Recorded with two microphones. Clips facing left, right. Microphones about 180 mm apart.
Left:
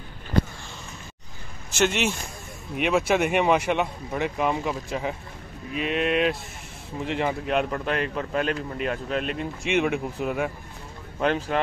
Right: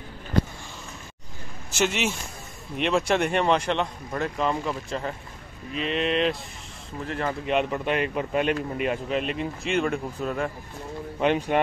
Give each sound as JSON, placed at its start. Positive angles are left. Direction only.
{"t": 1.7, "sound": "speech", "side_deg": 0}
{"t": 7.1, "sound": "speech", "side_deg": 15}
{"t": 7.4, "sound": "speech", "side_deg": 0}
{"t": 11.1, "sound": "speech", "side_deg": -5}